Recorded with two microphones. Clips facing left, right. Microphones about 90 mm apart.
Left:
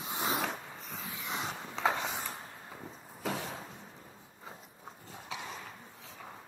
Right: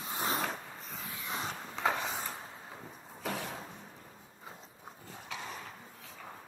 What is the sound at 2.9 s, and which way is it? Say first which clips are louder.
Vehicle: left 2 dB; 20° left (ahead or behind).